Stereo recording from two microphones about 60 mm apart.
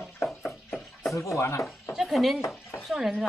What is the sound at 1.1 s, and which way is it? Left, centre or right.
Speech, left.